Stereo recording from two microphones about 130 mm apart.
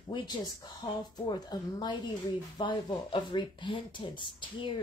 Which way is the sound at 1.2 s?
30° left (ahead or behind).